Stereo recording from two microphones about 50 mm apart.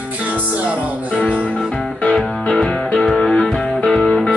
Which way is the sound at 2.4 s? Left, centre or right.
Centre.